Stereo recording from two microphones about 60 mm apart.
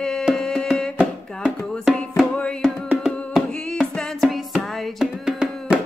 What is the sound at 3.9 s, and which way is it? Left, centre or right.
Music, centre.